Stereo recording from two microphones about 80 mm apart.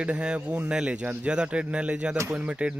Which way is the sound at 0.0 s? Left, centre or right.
Centre.